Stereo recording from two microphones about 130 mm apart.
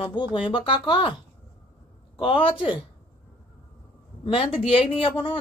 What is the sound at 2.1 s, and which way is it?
Speech, 40° left (ahead or behind).